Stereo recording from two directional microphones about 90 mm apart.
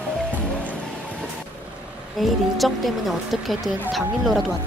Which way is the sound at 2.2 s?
Centre (ahead or behind).